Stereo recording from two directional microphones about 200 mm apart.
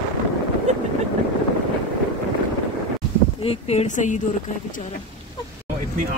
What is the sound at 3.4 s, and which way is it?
Speech, 30° left (ahead or behind).